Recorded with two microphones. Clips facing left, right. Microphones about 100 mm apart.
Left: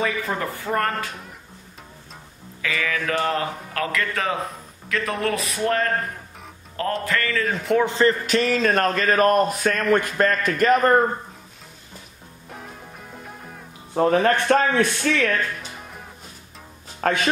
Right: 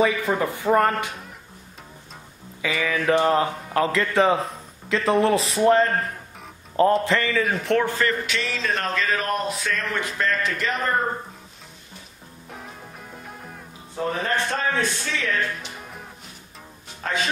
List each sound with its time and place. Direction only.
0.0 s speech: 15° right (ahead or behind)
2.6 s a man's voice: 15° right (ahead or behind)
7.1 s a man's voice: 20° right (ahead or behind)
7.4 s a man's voice: centre (ahead or behind)
7.8 s a man's voice: 25° left (ahead or behind)
8.3 s a man's voice: 45° left (ahead or behind)
13.2 s music: centre (ahead or behind)
13.9 s a man's voice: 60° left (ahead or behind)
17.0 s speech: 60° left (ahead or behind)